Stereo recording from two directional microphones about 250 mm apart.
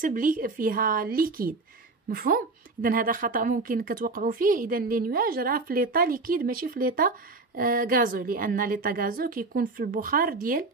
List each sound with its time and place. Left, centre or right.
0.0 s a woman's voice: right